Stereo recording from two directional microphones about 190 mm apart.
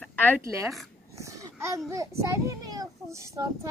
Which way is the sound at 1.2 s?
15° right (ahead or behind).